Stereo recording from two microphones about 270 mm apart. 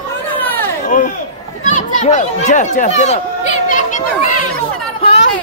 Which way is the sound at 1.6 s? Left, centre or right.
Left.